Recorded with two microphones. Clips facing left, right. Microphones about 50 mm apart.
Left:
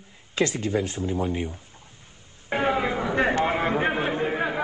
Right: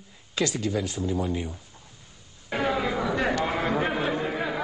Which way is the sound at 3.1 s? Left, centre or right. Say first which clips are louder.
Left 6 dB; left.